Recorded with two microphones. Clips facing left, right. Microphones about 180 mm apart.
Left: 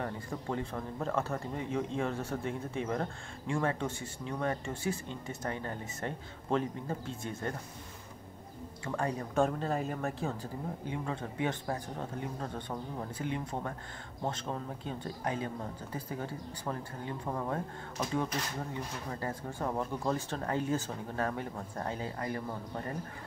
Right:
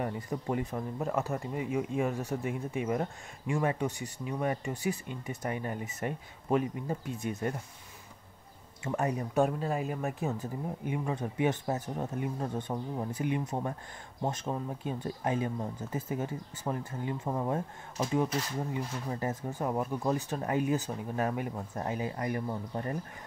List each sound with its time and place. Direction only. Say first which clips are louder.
0.0 s speech: right 3 dB; 15° right (ahead or behind)
8.8 s speech: right 3 dB; 20° right (ahead or behind)
9.3 s speech: even; 5° right (ahead or behind)